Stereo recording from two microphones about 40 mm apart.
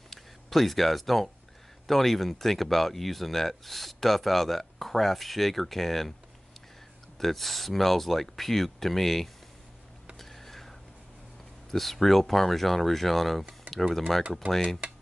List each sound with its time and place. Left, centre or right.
0.1 s speech: centre
7.2 s speech: centre
10.1 s a sound: centre
11.7 s speech: centre
14.4 s speech: right